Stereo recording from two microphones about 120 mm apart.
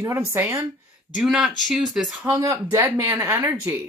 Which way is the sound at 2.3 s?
30° right (ahead or behind).